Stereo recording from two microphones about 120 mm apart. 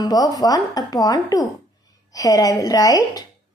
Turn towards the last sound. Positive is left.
turn(degrees=30)  # may be behind; listen again after turning